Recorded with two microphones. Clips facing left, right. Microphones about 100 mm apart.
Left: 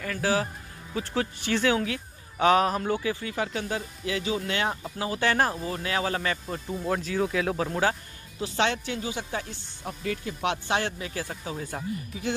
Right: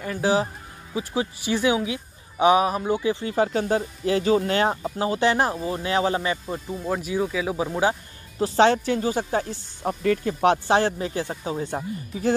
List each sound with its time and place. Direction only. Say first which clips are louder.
0.0 s speech: right 4 dB; 20° right (ahead or behind)
3.0 s speech: right 7 dB; 25° right (ahead or behind)
8.4 s speech: right 9 dB; 35° right (ahead or behind)